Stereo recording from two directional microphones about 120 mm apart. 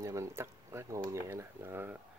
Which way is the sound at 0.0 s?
25° right (ahead or behind).